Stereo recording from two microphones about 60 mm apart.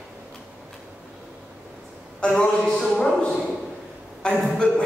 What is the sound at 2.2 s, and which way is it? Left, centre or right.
Speech, centre.